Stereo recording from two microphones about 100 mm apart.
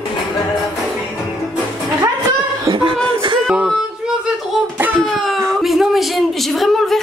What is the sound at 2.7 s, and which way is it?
Beatboxing, 30° right (ahead or behind).